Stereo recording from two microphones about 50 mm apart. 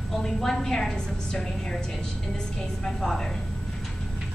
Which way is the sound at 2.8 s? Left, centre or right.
Centre.